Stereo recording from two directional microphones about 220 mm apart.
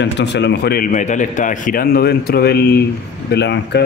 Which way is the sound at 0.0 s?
50° left (ahead or behind).